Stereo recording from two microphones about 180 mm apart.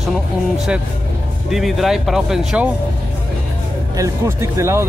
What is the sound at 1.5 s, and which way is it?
Speech, centre (ahead or behind).